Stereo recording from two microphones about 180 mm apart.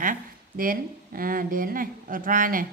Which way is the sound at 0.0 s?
50° right (ahead or behind).